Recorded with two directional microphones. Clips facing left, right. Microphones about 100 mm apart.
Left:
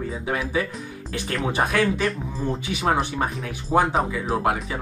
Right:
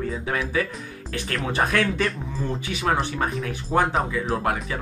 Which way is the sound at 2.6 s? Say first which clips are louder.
Left 1 dB; 20° left (ahead or behind).